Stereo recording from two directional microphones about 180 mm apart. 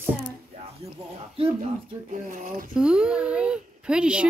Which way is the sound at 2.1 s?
45° right (ahead or behind).